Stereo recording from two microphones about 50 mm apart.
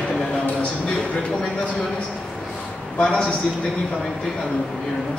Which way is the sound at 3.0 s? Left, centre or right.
Left.